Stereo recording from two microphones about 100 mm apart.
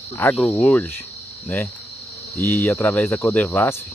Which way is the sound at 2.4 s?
25° left (ahead or behind).